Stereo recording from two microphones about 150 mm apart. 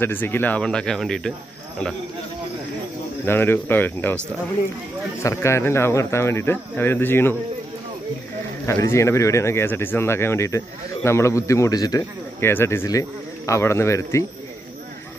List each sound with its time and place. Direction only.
0.0 s speech: 15° left (ahead or behind)
3.3 s speech: 15° left (ahead or behind)
5.2 s speech: 20° left (ahead or behind)
8.6 s speech: 20° left (ahead or behind)